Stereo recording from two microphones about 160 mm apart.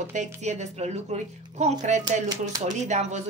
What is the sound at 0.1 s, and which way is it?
Speech, 45° right (ahead or behind).